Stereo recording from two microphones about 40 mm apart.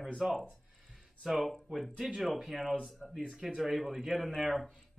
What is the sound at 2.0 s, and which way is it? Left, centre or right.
A man's voice, centre.